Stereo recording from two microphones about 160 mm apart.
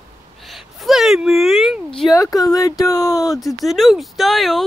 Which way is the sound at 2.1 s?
20° left (ahead or behind).